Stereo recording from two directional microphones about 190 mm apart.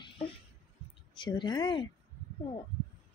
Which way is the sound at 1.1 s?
25° left (ahead or behind).